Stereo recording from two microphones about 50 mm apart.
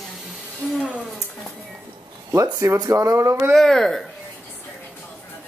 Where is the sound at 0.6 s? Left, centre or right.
Left.